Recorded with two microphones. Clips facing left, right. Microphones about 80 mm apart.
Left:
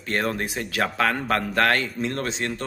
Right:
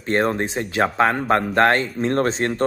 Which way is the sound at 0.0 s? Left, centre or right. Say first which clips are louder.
Right 6 dB; right.